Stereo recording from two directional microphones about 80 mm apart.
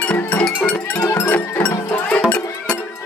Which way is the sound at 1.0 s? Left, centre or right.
Left.